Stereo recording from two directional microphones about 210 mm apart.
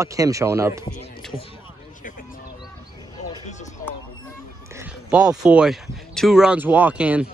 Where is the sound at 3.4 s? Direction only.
35° left (ahead or behind).